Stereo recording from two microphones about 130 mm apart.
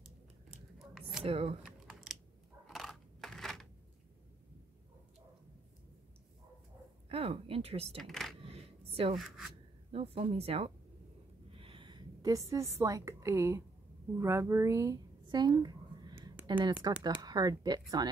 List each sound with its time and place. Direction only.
0.0 s scissors: 5° right (ahead or behind)
1.2 s speech: 45° right (ahead or behind)
1.6 s typing: centre (ahead or behind)
2.7 s a sound: centre (ahead or behind)
7.1 s speech: 45° right (ahead or behind)
8.0 s speech: centre (ahead or behind)
8.4 s a sound: 50° right (ahead or behind)
9.1 s speech: centre (ahead or behind)
9.8 s a woman's voice: 45° right (ahead or behind); by 15.0 s 20° right (ahead or behind)
15.2 s a sound: 35° right (ahead or behind)
17.0 s speech: 30° right (ahead or behind)